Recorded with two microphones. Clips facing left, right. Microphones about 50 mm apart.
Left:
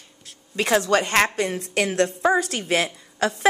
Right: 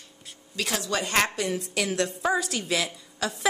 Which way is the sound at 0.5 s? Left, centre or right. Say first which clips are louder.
Left 9 dB; left.